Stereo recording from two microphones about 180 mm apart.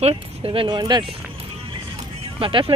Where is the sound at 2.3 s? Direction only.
30° right (ahead or behind).